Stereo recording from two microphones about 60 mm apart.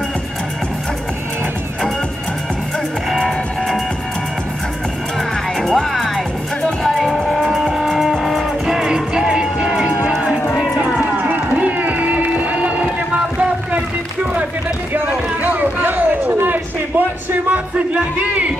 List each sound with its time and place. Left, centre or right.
3.2 s music: centre
5.6 s music: centre
7.5 s music: centre
10.8 s a sound: right
15.4 s a sound: right
17.5 s music: right